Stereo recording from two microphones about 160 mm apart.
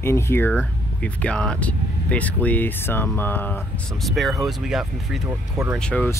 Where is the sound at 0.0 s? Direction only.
15° left (ahead or behind).